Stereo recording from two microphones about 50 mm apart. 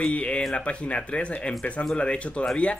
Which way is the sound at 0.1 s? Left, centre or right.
Left.